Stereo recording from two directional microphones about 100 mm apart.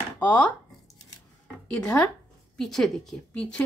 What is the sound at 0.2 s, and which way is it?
Speech, 20° left (ahead or behind).